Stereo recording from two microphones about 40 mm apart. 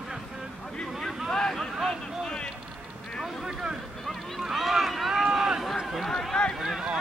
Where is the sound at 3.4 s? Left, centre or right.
Centre.